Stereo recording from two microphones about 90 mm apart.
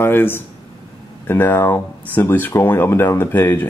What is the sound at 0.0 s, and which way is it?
Speech, 25° left (ahead or behind).